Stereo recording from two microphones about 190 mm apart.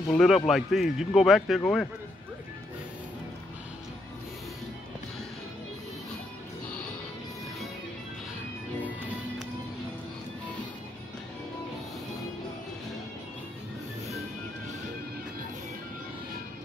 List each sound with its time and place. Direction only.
0.1 s speech: centre (ahead or behind)